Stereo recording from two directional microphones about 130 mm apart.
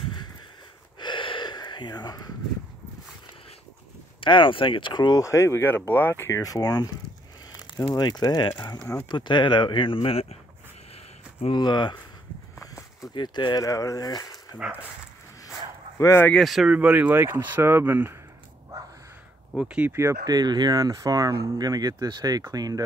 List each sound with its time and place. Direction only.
0.9 s gasp: 35° left (ahead or behind)
4.2 s speech: 40° left (ahead or behind)
11.5 s speech: 35° left (ahead or behind)
13.1 s speech: 35° left (ahead or behind)
16.0 s speech: 20° left (ahead or behind)
16.3 s speech: centre (ahead or behind); by 18.1 s 15° right (ahead or behind)
19.5 s speech: 5° right (ahead or behind)
19.9 s speech: 20° right (ahead or behind)